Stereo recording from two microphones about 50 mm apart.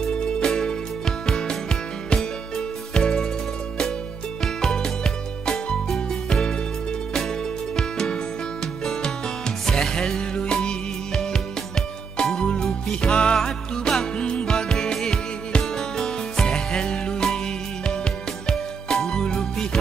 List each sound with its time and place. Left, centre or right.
0.0 s music: centre
4.6 s music: centre
7.7 s music: centre
9.7 s music: centre
12.2 s music: centre
18.5 s music: centre